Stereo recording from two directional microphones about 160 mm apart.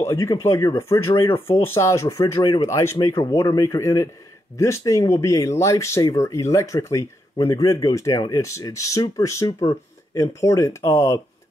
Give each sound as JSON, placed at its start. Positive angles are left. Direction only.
{"t": 0.0, "sound": "speech", "side_deg": 15}